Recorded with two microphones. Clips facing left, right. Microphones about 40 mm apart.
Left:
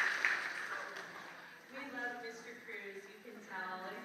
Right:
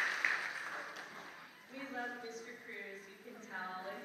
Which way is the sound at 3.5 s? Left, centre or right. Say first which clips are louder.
Left 1 dB; centre.